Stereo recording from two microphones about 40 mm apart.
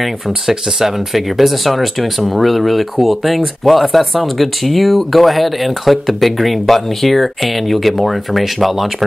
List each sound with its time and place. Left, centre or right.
0.0 s speech: centre